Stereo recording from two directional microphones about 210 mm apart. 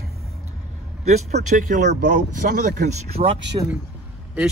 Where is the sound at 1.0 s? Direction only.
30° right (ahead or behind).